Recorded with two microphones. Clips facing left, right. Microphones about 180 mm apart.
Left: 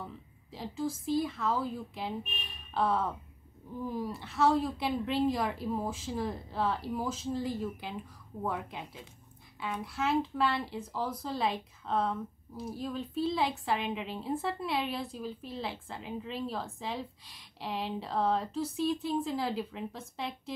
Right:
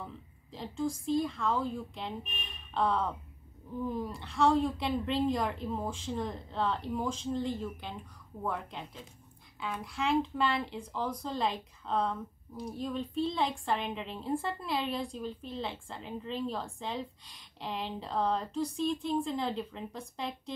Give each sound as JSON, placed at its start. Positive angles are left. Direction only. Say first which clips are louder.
{"t": 0.0, "sound": "a woman's voice", "louder": "even", "side_deg": 0}